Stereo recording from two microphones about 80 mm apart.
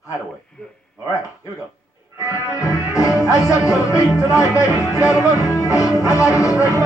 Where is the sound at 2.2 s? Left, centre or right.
Left.